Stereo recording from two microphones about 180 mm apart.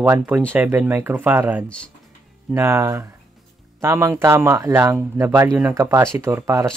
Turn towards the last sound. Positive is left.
turn(degrees=-15)  # may be behind; listen again after turning